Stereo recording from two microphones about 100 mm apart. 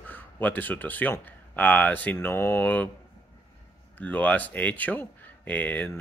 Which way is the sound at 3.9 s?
15° left (ahead or behind).